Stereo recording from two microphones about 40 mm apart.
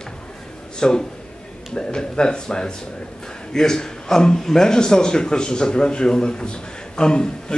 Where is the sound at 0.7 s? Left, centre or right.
Centre.